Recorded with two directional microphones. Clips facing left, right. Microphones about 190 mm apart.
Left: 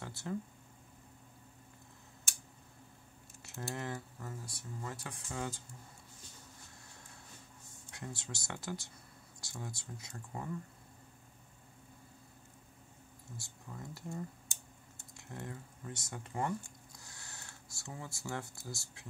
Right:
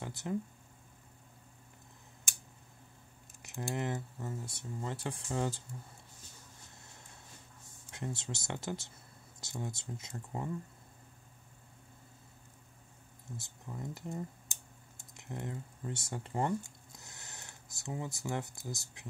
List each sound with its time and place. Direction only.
0.0 s a sound: 15° right (ahead or behind)
3.4 s speech: 15° right (ahead or behind); by 5.6 s 30° right (ahead or behind)
7.9 s speech: 25° right (ahead or behind)
13.4 s speech: 20° right (ahead or behind)